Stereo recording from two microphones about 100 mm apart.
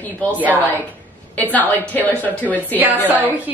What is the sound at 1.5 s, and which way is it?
Speech, 15° left (ahead or behind).